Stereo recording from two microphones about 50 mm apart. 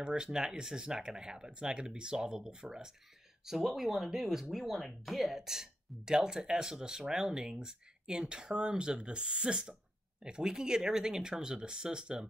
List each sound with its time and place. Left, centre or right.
0.0 s speech: centre